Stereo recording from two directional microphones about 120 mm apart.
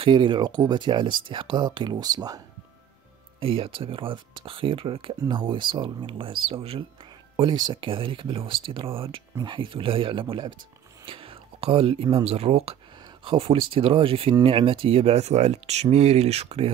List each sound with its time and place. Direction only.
0.0 s speech: 40° right (ahead or behind)
3.3 s speech: 50° right (ahead or behind)
7.3 s speech: 40° right (ahead or behind)
11.1 s whispering: 50° right (ahead or behind)
12.2 s speech: 55° right (ahead or behind)